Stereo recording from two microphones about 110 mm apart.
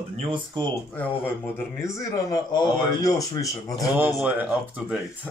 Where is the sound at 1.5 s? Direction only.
25° left (ahead or behind).